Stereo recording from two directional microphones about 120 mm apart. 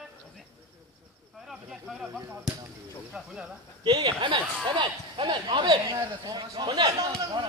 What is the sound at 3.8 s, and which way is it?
Speech, 40° right (ahead or behind).